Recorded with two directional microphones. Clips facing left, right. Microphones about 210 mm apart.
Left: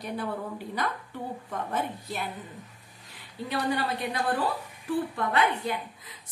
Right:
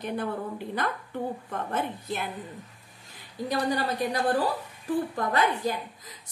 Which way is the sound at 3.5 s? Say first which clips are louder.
Right 1 dB; 40° right (ahead or behind).